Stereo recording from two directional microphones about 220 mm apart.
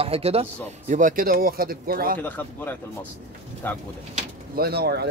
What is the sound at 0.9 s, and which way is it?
Speech, 40° right (ahead or behind).